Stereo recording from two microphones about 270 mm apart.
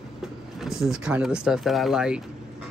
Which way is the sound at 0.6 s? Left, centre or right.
Centre.